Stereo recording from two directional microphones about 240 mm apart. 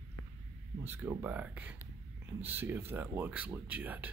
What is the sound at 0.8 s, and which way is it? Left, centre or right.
Speech, centre.